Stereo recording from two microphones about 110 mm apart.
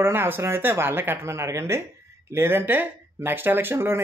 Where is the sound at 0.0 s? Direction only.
20° right (ahead or behind).